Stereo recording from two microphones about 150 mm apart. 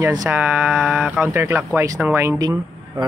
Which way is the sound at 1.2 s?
15° right (ahead or behind).